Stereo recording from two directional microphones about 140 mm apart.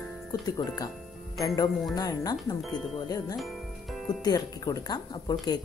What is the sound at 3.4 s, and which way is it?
Music, centre (ahead or behind).